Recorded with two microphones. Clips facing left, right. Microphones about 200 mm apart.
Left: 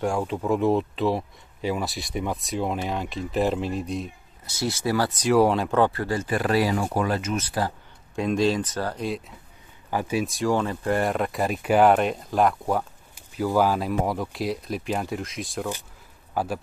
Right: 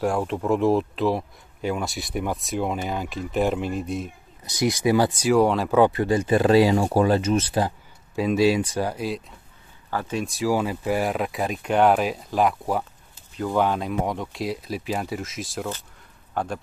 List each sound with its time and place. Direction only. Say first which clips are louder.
0.0 s speech: right 2 dB; centre (ahead or behind)
4.5 s speech: right 5 dB; 15° right (ahead or behind)
5.3 s speech: left 1 dB; centre (ahead or behind)
5.8 s speech: right 4 dB; 15° right (ahead or behind)
8.2 s speech: right 3 dB; 5° right (ahead or behind)
9.8 s speech: left 2 dB; 10° left (ahead or behind)